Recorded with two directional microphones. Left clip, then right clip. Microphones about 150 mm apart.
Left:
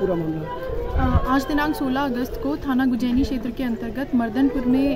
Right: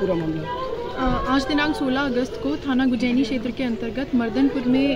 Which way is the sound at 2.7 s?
20° left (ahead or behind).